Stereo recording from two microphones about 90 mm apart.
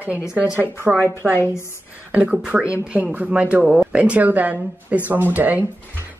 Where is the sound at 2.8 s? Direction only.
10° right (ahead or behind).